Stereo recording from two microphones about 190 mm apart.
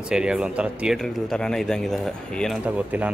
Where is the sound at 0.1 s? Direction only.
5° right (ahead or behind).